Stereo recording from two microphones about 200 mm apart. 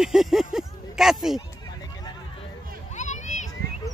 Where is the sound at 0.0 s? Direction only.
Centre (ahead or behind).